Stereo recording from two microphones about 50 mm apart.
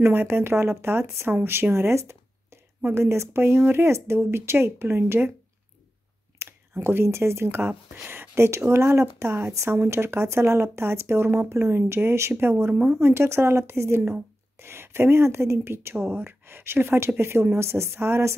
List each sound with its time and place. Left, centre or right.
0.0 s speech: right
1.3 s speech: right
6.3 s speech: right
8.5 s speech: right
9.8 s speech: right